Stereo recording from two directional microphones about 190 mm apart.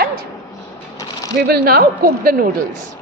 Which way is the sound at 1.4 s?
55° right (ahead or behind).